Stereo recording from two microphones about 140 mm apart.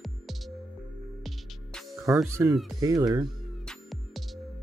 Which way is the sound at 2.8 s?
25° right (ahead or behind).